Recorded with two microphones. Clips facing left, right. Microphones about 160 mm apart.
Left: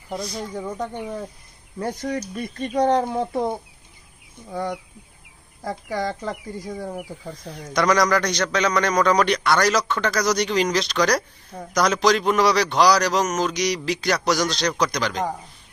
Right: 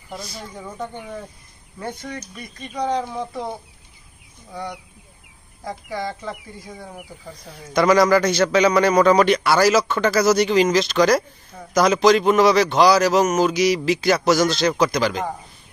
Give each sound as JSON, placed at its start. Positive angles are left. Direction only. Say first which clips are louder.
{"t": 0.1, "sound": "a man's voice", "louder": "left 5 dB", "side_deg": -5}
{"t": 1.8, "sound": "speech", "louder": "left 5 dB", "side_deg": 40}
{"t": 5.6, "sound": "speech", "louder": "left 2 dB", "side_deg": 40}
{"t": 7.7, "sound": "a man's voice", "louder": "right 4 dB", "side_deg": -5}